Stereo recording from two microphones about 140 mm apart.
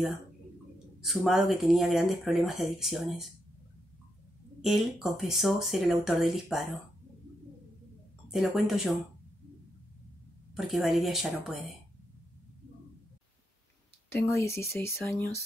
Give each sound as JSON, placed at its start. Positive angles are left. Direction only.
{"t": 1.0, "sound": "speech", "side_deg": 0}
{"t": 4.6, "sound": "speech", "side_deg": 0}
{"t": 8.3, "sound": "speech", "side_deg": 0}
{"t": 10.5, "sound": "speech", "side_deg": -5}
{"t": 14.3, "sound": "speech", "side_deg": 20}